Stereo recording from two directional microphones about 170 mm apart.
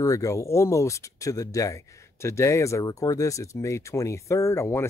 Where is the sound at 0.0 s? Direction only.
20° left (ahead or behind).